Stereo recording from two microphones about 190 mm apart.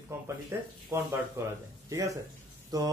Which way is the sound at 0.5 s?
15° right (ahead or behind).